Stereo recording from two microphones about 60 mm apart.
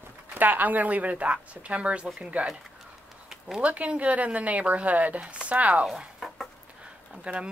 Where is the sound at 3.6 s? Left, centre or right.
Right.